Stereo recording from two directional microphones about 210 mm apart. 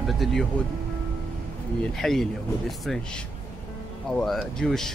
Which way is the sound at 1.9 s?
Centre (ahead or behind).